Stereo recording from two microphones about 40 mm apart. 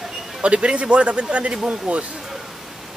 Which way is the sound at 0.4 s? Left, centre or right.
Right.